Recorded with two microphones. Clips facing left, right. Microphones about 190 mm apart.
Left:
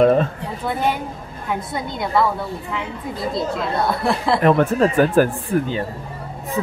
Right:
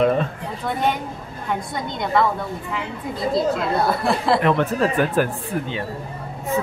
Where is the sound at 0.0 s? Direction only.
40° left (ahead or behind).